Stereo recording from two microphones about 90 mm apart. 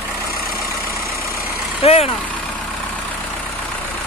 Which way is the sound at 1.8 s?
90° left.